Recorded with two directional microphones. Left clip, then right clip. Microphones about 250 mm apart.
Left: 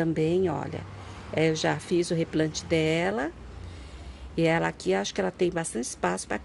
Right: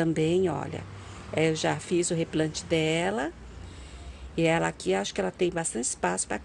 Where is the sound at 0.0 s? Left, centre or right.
Centre.